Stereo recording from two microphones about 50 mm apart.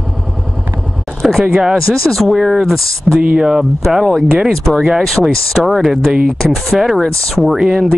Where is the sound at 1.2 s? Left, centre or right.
Centre.